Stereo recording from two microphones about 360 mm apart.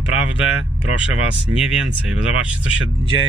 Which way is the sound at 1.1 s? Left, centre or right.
Centre.